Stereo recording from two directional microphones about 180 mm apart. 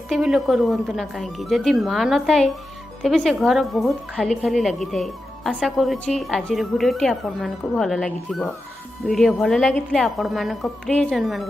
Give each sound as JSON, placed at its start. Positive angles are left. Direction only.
{"t": 0.1, "sound": "a woman's voice", "side_deg": 0}